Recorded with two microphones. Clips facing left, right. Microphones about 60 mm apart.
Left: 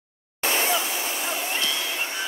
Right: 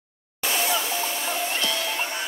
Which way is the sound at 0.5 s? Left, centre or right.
Left.